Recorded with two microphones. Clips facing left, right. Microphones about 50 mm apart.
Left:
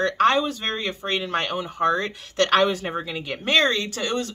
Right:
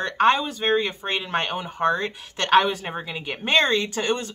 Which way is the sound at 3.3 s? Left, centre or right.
Right.